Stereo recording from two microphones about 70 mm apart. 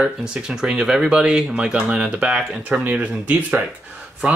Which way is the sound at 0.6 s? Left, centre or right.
Centre.